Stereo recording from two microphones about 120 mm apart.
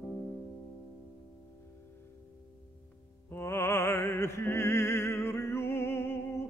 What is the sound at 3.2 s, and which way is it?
Music, 20° left (ahead or behind).